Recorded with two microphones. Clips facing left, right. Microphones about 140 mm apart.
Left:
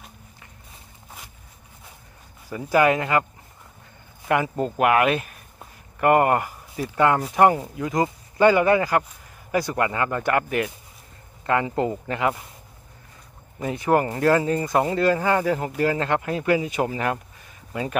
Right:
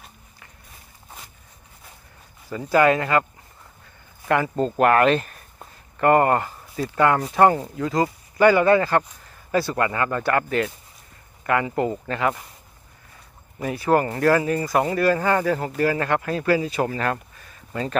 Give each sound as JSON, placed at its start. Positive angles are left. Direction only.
{"t": 2.5, "sound": "speech", "side_deg": 15}
{"t": 4.3, "sound": "speech", "side_deg": 15}
{"t": 13.6, "sound": "speech", "side_deg": 20}